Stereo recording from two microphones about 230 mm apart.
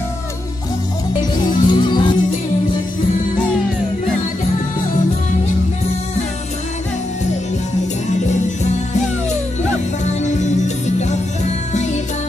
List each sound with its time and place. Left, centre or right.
1.4 s music: centre
10.0 s music: left
11.7 s music: left